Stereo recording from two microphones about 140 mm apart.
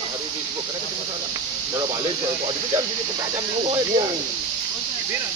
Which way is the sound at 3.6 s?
40° right (ahead or behind).